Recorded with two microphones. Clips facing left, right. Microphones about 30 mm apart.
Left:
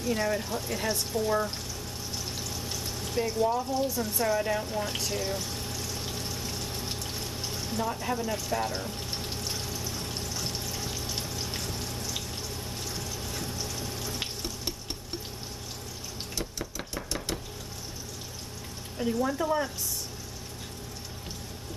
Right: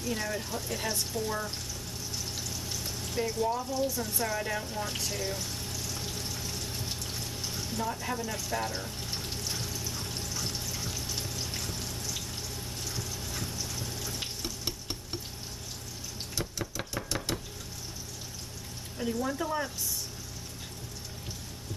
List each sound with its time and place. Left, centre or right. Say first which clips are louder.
0.0 s speech: left 5 dB; centre
3.1 s speech: left 3 dB; centre
5.1 s a sound: left 3 dB; centre
8.3 s speech: left 3 dB; centre
9.5 s pour: left 1 dB; centre
10.2 s pump: left 2 dB; centre
10.9 s water: left 2 dB; centre
12.8 s a sound: even; centre
13.3 s vehicle: left 2 dB; centre
13.7 s water: left 2 dB; centre
14.4 s water: left 1 dB; centre
16.3 s a sound: right 1 dB; centre
18.9 s speech: left 4 dB; centre